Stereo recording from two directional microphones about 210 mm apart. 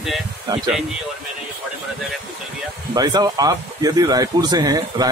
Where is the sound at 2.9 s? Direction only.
20° right (ahead or behind).